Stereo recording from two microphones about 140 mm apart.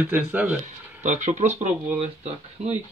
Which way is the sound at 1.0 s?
60° right (ahead or behind).